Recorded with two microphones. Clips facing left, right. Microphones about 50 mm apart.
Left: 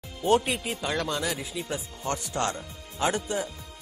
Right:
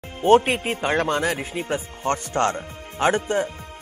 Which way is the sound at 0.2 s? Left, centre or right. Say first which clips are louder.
Right 7 dB; right.